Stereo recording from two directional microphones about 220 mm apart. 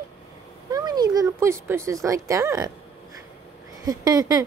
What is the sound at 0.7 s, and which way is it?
Speech, 20° right (ahead or behind).